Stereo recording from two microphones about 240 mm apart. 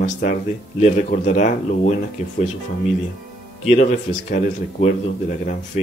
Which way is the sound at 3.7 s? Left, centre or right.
Left.